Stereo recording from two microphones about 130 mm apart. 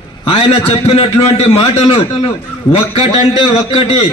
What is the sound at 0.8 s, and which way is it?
A man's voice, 50° left (ahead or behind).